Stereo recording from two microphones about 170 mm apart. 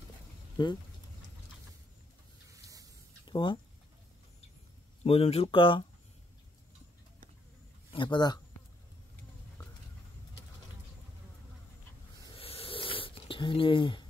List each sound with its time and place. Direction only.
0.6 s speech: 25° left (ahead or behind)
2.5 s spray: 20° right (ahead or behind)
3.3 s a sound: 30° left (ahead or behind)
5.0 s speech: 35° left (ahead or behind)
7.9 s speech: 25° left (ahead or behind)
12.4 s a sound: 35° left (ahead or behind)